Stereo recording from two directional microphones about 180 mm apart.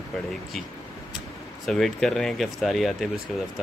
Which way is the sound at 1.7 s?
Centre (ahead or behind).